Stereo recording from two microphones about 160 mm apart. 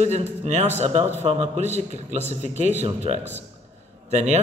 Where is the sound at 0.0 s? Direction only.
45° right (ahead or behind).